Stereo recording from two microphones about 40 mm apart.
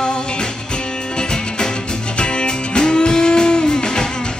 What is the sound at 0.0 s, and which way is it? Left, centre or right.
Music, centre.